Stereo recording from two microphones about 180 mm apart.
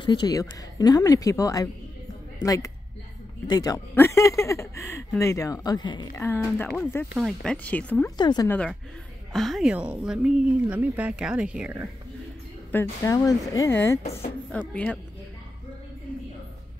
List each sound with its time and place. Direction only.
0.0 s a woman's voice: 25° left (ahead or behind)
6.1 s speech: 10° left (ahead or behind)
7.2 s speech: 5° left (ahead or behind)
8.2 s a woman's voice: 25° left (ahead or behind)
8.5 s speech: 5° left (ahead or behind)
13.0 s speech: 20° left (ahead or behind)